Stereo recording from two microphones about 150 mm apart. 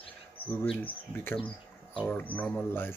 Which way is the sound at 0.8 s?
15° left (ahead or behind).